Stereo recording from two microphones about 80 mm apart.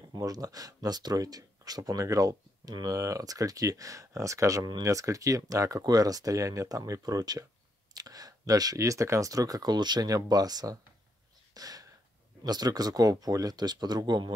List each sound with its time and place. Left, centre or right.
0.1 s speech: right
11.5 s a sound: right
12.4 s speech: right